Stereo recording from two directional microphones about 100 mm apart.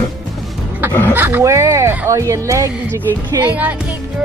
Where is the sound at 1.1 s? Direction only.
20° right (ahead or behind).